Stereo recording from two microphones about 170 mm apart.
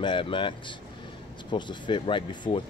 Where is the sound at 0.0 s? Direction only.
30° left (ahead or behind).